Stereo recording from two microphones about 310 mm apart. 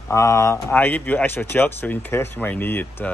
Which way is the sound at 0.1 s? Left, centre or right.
Centre.